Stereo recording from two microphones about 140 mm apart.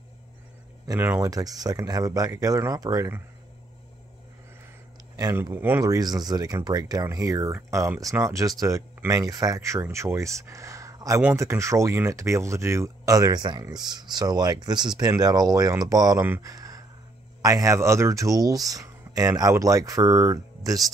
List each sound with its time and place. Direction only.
0.8 s speech: 15° right (ahead or behind)
1.3 s speech: 25° right (ahead or behind)
5.3 s speech: 15° right (ahead or behind)
16.3 s a sound: 25° right (ahead or behind)
17.4 s speech: 25° right (ahead or behind)